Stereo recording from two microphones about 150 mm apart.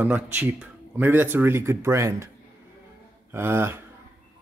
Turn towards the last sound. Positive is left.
turn(degrees=-15)  # may be behind; listen again after turning